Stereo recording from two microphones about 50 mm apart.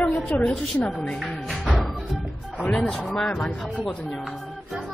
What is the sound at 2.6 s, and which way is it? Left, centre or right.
Speech, centre.